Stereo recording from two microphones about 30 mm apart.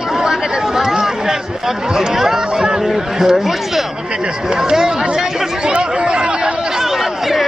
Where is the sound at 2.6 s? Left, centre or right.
Centre.